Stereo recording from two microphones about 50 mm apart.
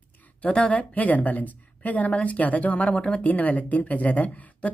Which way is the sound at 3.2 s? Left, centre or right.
Left.